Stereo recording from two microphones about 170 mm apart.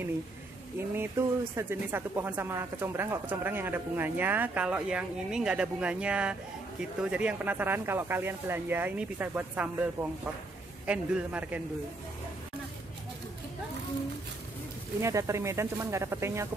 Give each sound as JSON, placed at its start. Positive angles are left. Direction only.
{"t": 0.9, "sound": "speech", "side_deg": -15}
{"t": 10.9, "sound": "speech", "side_deg": -5}
{"t": 15.0, "sound": "speech", "side_deg": -15}